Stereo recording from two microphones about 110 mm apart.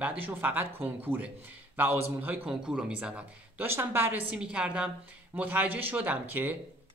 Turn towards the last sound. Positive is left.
turn(degrees=-15)  # may be behind; listen again after turning